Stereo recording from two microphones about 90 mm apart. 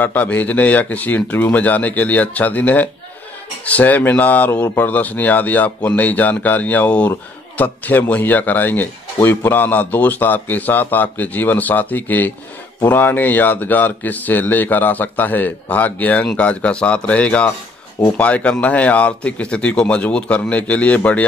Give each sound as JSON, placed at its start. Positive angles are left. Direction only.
{"t": 0.0, "sound": "a man's voice", "side_deg": 20}